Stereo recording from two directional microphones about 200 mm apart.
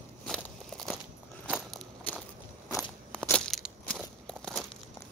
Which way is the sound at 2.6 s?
15° left (ahead or behind).